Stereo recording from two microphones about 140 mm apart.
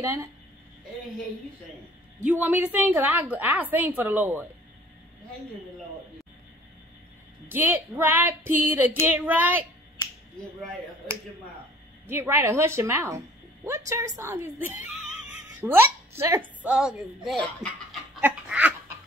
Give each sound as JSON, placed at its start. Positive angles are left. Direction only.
{"t": 0.0, "sound": "a woman's voice", "side_deg": -20}
{"t": 2.2, "sound": "a woman's voice", "side_deg": -15}
{"t": 7.4, "sound": "a woman's voice", "side_deg": -15}
{"t": 12.1, "sound": "a woman's voice", "side_deg": -15}
{"t": 15.2, "sound": "a sound", "side_deg": -15}
{"t": 16.2, "sound": "a woman's voice", "side_deg": -20}
{"t": 16.6, "sound": "a woman's voice", "side_deg": -5}
{"t": 18.2, "sound": "a sound", "side_deg": -10}